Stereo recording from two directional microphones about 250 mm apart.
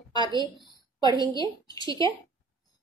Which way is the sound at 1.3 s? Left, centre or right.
Centre.